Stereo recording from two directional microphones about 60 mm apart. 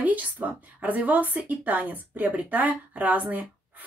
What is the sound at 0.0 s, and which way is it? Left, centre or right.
Speech, right.